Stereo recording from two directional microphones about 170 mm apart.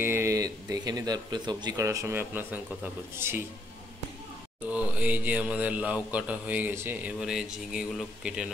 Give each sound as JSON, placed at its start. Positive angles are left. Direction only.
{"t": 0.0, "sound": "speech", "side_deg": -15}
{"t": 4.6, "sound": "speech", "side_deg": -10}